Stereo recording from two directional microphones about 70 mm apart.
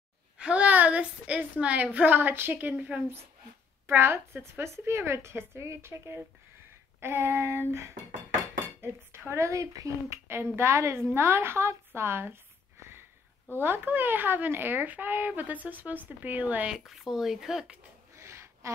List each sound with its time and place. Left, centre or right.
0.4 s a woman's voice: centre; by 7.6 s right
8.8 s a woman's voice: right
13.6 s speech: right
16.7 s speech: centre
18.1 s a sound: right